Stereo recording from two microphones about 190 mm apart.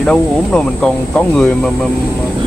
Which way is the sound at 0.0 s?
5° left (ahead or behind).